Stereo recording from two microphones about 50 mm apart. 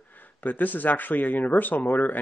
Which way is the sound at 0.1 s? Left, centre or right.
Left.